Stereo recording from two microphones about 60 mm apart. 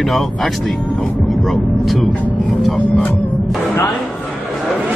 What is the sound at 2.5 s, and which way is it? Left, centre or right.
Vehicle, centre.